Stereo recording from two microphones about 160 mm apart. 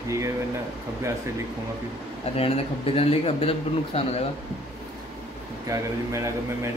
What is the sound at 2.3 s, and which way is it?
A man's voice, 35° left (ahead or behind).